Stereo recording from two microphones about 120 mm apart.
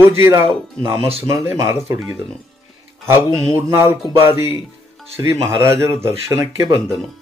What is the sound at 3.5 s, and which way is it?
Speech, 20° right (ahead or behind).